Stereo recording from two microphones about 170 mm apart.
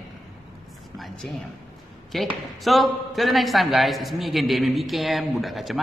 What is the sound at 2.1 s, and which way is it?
A man's voice, centre (ahead or behind).